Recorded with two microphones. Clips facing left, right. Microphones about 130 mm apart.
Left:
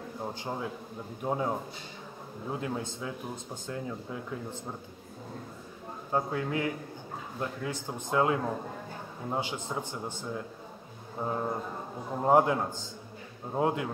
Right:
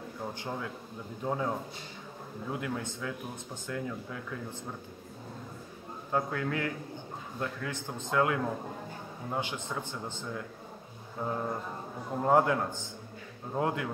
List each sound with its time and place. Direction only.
0.2 s a man's voice: 20° left (ahead or behind)
6.1 s a man's voice: 20° left (ahead or behind)